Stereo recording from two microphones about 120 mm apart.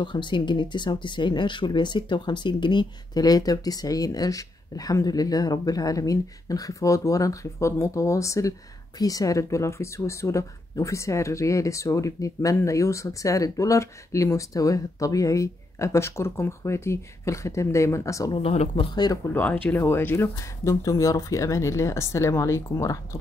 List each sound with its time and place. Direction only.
0.0 s speech: 40° left (ahead or behind)
18.3 s speech: 55° left (ahead or behind)
19.3 s speech: 15° left (ahead or behind)